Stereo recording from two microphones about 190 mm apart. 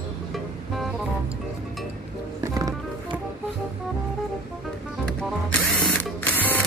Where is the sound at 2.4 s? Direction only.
15° right (ahead or behind).